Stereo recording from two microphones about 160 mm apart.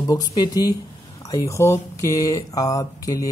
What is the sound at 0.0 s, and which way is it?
Speech, 25° left (ahead or behind).